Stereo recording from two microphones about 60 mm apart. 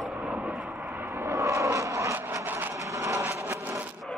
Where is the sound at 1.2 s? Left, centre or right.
Right.